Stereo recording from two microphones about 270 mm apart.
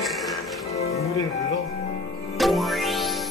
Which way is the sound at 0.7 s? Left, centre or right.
Left.